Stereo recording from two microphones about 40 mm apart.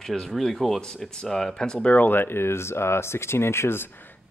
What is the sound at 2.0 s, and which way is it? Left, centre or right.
Speech, left.